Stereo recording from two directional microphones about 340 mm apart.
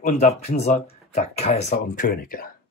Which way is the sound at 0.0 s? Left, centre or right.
Centre.